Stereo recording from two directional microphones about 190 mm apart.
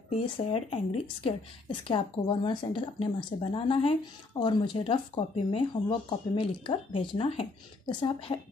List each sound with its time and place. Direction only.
0.1 s speech: 30° left (ahead or behind)